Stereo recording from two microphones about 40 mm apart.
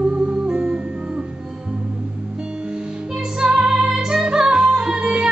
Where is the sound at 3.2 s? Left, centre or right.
Centre.